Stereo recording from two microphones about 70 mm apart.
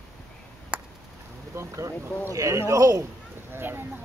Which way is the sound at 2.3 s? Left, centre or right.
Right.